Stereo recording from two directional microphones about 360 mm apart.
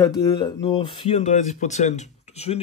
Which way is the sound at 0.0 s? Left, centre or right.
Centre.